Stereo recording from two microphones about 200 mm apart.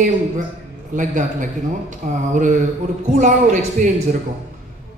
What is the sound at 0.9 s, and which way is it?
Speech, 40° right (ahead or behind).